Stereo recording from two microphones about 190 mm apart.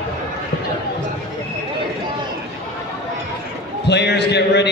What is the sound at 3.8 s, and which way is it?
Speech, 60° left (ahead or behind).